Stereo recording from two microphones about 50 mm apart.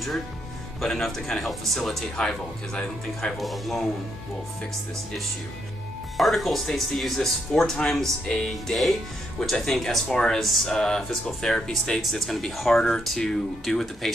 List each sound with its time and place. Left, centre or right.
0.7 s speech: centre
3.3 s speech: centre
6.1 s speech: centre
10.4 s speech: centre
10.7 s speech: centre